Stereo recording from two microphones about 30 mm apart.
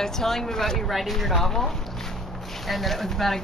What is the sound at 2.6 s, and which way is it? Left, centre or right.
Speech, centre.